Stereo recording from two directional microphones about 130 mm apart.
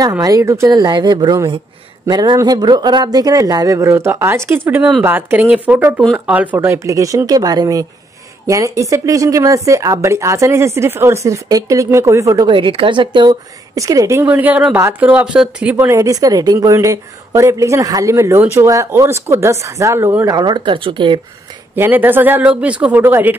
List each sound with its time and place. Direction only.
0.2 s speech: 25° right (ahead or behind)
12.4 s speech: 40° right (ahead or behind); by 14.2 s 25° right (ahead or behind)
14.2 s speech: 10° right (ahead or behind); by 21.2 s 40° right (ahead or behind)
21.7 s speech: 15° right (ahead or behind)